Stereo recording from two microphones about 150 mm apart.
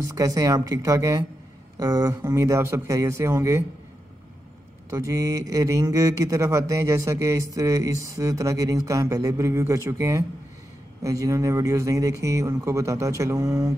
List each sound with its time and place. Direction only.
0.1 s speech: 25° right (ahead or behind)
4.9 s speech: 20° right (ahead or behind)